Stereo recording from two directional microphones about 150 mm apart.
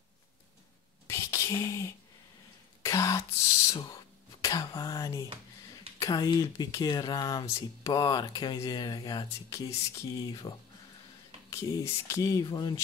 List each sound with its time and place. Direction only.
1.0 s a sound: 20° left (ahead or behind)
2.8 s speech: 20° left (ahead or behind)
11.5 s speech: 25° left (ahead or behind)